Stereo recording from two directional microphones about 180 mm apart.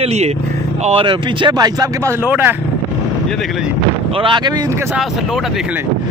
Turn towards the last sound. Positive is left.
turn(degrees=-25)  # may be behind; listen again after turning